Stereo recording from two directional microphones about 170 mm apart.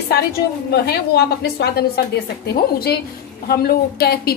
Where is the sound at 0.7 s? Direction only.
70° left (ahead or behind).